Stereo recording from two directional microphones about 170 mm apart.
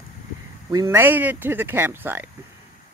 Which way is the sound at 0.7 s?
15° right (ahead or behind).